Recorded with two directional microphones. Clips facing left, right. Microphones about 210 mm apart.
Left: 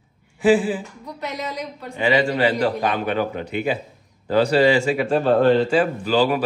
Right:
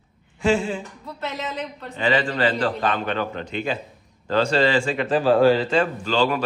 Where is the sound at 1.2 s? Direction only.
15° left (ahead or behind).